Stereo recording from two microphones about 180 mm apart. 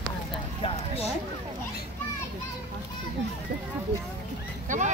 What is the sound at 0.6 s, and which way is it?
Clip-clop, 35° left (ahead or behind).